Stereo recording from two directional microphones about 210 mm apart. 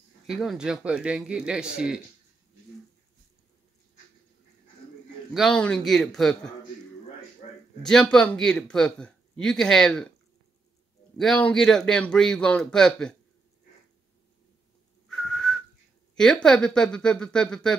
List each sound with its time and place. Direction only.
0.3 s a man's voice: centre (ahead or behind)
5.3 s a man's voice: centre (ahead or behind)
7.4 s a sound: 35° left (ahead or behind)
7.8 s a man's voice: 5° left (ahead or behind)
11.1 s a man's voice: 5° left (ahead or behind)
15.0 s whistling: centre (ahead or behind)
16.2 s a man's voice: 5° left (ahead or behind)